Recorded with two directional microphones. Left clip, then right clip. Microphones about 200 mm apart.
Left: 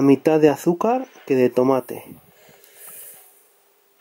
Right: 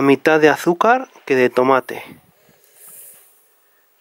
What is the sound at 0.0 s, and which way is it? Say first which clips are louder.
Speech: right 3 dB; 10° left (ahead or behind).